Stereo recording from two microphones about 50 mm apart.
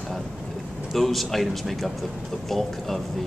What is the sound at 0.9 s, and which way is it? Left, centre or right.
Speech, centre.